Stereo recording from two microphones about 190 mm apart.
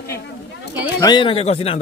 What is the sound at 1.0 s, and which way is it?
Speech, 25° left (ahead or behind).